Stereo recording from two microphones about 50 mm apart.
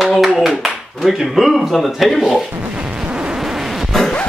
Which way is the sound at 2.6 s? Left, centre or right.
Centre.